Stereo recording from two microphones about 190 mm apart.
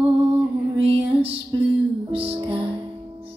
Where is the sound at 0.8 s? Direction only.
30° right (ahead or behind).